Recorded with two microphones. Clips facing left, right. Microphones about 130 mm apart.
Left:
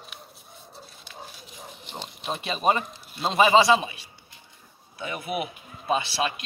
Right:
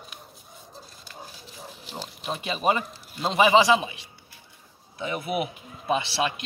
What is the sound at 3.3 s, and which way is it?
Speech, 15° right (ahead or behind).